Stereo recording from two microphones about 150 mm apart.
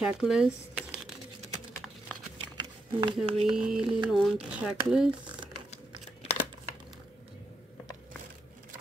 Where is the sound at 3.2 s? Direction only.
40° right (ahead or behind).